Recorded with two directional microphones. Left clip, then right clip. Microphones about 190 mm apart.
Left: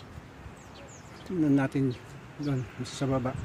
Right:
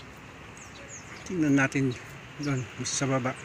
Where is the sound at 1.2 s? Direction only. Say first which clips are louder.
Right 2 dB; 10° left (ahead or behind).